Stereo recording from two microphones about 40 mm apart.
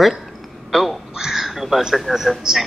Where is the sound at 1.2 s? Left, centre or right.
Centre.